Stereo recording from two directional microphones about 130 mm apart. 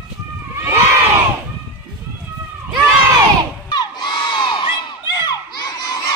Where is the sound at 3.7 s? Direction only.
35° left (ahead or behind).